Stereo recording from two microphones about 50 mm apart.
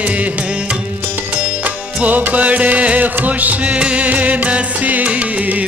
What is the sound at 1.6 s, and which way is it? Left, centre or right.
Music, right.